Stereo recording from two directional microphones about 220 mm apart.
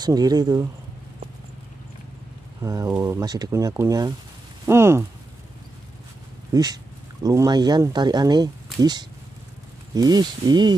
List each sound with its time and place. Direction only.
0.0 s speech: 15° right (ahead or behind)
2.6 s speech: 15° right (ahead or behind)
6.5 s speech: 15° right (ahead or behind)
9.9 s speech: 15° right (ahead or behind)